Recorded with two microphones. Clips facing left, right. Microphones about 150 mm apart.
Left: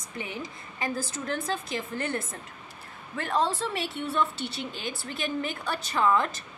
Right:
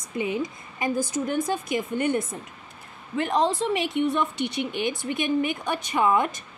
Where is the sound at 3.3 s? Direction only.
15° right (ahead or behind).